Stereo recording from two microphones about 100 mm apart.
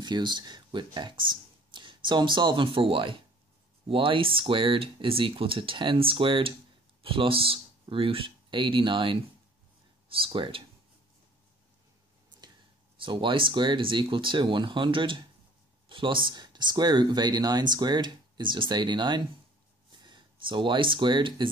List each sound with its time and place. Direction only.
0.0 s speech: 50° right (ahead or behind)
10.0 s speech: 65° right (ahead or behind)
13.0 s speech: 55° right (ahead or behind)